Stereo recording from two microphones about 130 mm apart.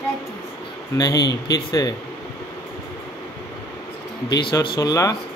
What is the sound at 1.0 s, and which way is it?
Speech, 30° left (ahead or behind).